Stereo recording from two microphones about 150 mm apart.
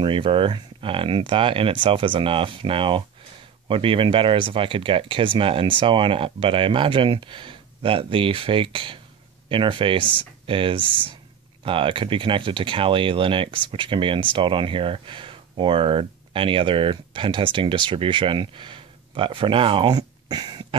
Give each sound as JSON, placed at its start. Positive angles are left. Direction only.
{"t": 0.0, "sound": "speech", "side_deg": -35}